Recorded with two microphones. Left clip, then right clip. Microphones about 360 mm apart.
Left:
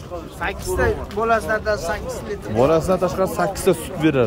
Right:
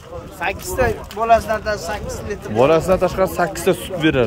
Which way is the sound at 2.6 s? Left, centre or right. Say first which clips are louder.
Right 3 dB; centre.